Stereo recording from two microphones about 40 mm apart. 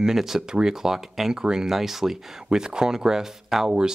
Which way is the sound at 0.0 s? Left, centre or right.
Centre.